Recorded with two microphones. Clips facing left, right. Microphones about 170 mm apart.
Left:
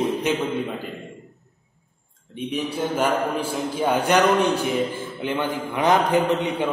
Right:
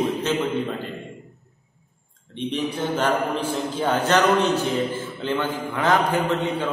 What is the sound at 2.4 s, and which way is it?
Mantra, 10° left (ahead or behind).